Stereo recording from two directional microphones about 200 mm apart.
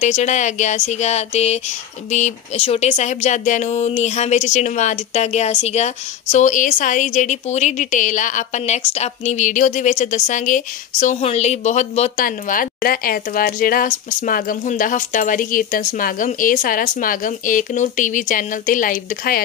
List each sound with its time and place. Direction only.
0.0 s speech: 35° left (ahead or behind)